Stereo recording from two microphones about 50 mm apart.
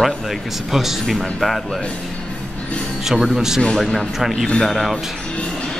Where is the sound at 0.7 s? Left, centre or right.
Centre.